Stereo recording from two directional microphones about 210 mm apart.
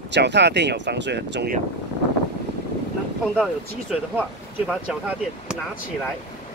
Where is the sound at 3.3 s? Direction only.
5° right (ahead or behind).